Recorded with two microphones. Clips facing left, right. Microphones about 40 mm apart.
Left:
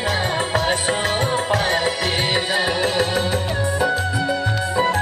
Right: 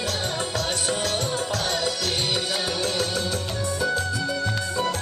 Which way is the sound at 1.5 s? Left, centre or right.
Left.